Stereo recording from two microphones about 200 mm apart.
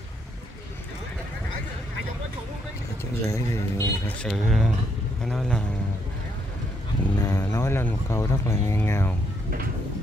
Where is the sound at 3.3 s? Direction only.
15° left (ahead or behind).